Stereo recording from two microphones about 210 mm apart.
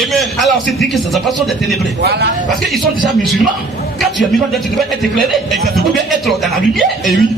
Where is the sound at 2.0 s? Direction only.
50° right (ahead or behind).